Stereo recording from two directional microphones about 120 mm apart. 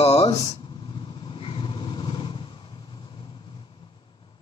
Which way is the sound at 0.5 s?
45° left (ahead or behind).